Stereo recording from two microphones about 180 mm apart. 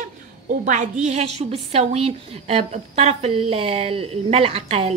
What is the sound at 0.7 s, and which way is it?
A woman's voice, 40° right (ahead or behind).